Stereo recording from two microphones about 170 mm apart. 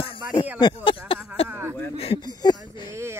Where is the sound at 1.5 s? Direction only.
15° right (ahead or behind).